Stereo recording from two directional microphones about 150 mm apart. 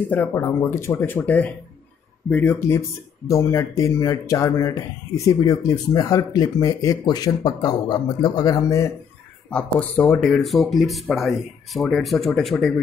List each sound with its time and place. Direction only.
0.1 s speech: 15° left (ahead or behind)
9.5 s speech: 10° left (ahead or behind)